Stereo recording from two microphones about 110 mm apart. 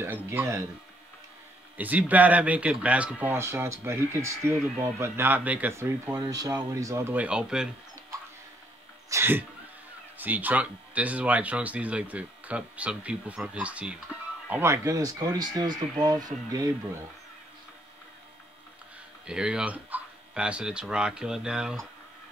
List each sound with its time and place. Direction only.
0.0 s speech: 20° right (ahead or behind)
1.8 s speech: 15° right (ahead or behind)
3.3 s speech: 25° right (ahead or behind)
6.1 s speech: 35° right (ahead or behind); by 7.7 s 10° right (ahead or behind)
9.1 s speech: 20° right (ahead or behind)
14.5 s speech: 25° right (ahead or behind)
19.2 s speech: 10° right (ahead or behind)